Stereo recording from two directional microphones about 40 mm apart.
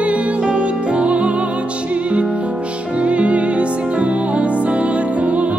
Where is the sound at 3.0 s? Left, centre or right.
Right.